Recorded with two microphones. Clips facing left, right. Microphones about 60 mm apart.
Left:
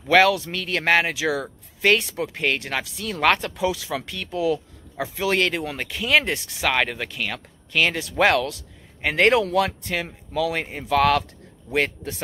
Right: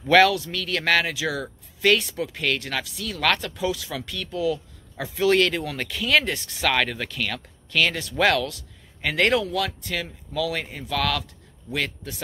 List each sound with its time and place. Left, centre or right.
0.0 s speech: centre
0.3 s speech: left
4.9 s a man's voice: centre; by 12.2 s left